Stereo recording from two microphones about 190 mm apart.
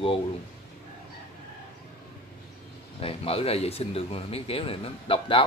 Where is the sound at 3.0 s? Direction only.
30° left (ahead or behind).